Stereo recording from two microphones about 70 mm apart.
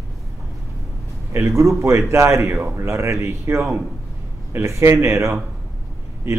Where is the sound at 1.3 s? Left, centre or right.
Right.